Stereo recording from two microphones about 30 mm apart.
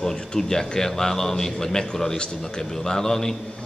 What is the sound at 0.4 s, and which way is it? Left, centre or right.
A man's voice, centre.